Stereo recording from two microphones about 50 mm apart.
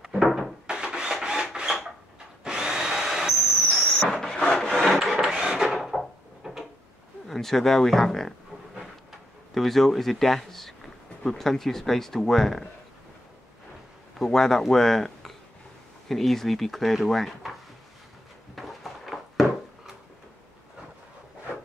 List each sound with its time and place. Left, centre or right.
0.0 s a sound: centre
0.7 s rub: centre
2.4 s drill: centre
4.2 s wood: centre
4.6 s wood: centre
5.7 s a sound: centre
7.2 s speech: centre
9.5 s speech: centre
14.1 s speech: centre
18.5 s a sound: centre